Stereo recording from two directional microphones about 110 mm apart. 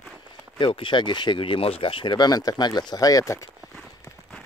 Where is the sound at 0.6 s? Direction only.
50° left (ahead or behind); by 3.5 s 30° left (ahead or behind).